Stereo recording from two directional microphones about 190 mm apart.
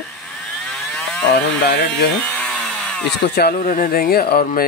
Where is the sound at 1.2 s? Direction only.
65° left (ahead or behind).